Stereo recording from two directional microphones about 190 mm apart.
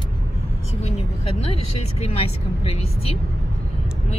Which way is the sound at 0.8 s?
30° left (ahead or behind).